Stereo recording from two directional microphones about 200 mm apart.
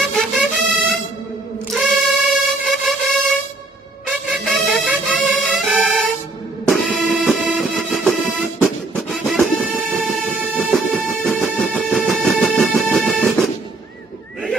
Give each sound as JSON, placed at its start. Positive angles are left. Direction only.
{"t": 0.2, "sound": "music", "side_deg": 0}